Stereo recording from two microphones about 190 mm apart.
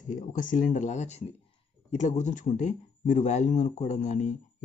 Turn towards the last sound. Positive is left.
turn(degrees=40)  # may be behind; listen again after turning